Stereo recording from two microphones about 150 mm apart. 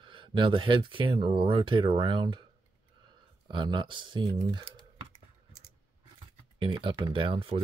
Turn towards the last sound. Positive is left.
turn(degrees=-35)  # may be behind; listen again after turning